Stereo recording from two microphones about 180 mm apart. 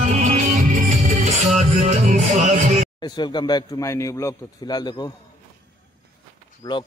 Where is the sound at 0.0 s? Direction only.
40° right (ahead or behind).